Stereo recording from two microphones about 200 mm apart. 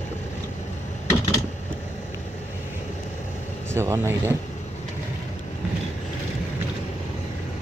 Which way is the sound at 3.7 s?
10° right (ahead or behind).